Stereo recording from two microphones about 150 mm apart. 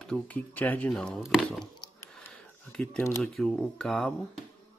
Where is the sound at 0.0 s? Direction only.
5° left (ahead or behind).